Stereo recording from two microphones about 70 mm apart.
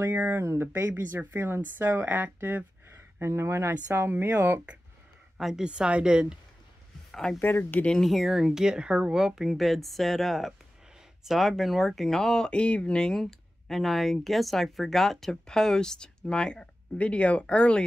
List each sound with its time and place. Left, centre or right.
0.0 s speech: right
0.4 s speech: right
2.9 s speech: right
5.4 s a woman's voice: centre
7.1 s a sound: centre
7.3 s speech: left
8.0 s speech: centre